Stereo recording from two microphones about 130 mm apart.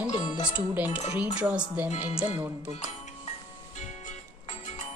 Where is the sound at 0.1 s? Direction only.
40° left (ahead or behind).